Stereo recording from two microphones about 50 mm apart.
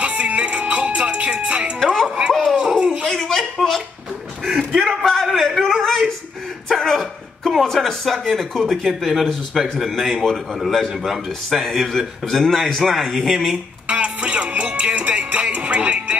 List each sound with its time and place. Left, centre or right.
0.0 s music: right
2.0 s a sound: centre
3.1 s a sound: centre
8.3 s a man's voice: centre
12.8 s a man's voice: centre
13.8 s music: right